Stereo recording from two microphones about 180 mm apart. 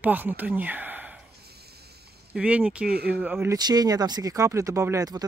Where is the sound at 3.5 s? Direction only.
20° right (ahead or behind).